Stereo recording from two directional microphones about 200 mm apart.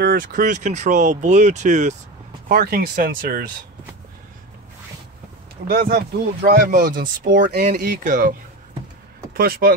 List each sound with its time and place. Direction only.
0.0 s speech: 45° right (ahead or behind)
2.4 s speech: 50° right (ahead or behind)
5.7 s speech: 50° right (ahead or behind)
7.3 s speech: 60° right (ahead or behind)
7.6 s speech: 40° right (ahead or behind)